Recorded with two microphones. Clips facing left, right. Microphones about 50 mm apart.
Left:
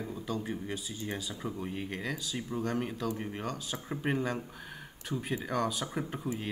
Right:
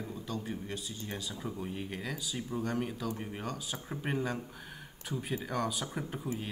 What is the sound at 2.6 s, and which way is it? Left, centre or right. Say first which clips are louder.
Speech: left 2 dB; centre.